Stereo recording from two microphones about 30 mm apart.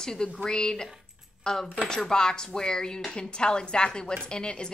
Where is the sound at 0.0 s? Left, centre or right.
Left.